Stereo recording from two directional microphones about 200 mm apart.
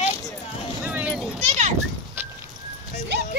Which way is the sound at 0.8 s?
5° right (ahead or behind).